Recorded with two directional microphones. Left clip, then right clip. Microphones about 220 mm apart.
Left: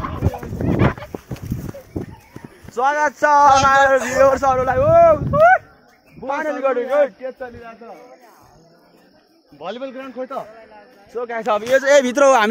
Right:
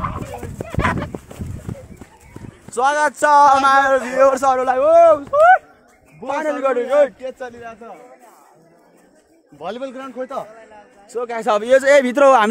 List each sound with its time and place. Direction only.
0.7 s dog: 45° right (ahead or behind)
2.7 s speech: 10° right (ahead or behind)
4.6 s a man's voice: 15° right (ahead or behind)
9.6 s a man's voice: 45° right (ahead or behind)
11.1 s speech: 15° right (ahead or behind)
11.4 s a man's voice: 40° right (ahead or behind)
11.8 s speech: 15° right (ahead or behind)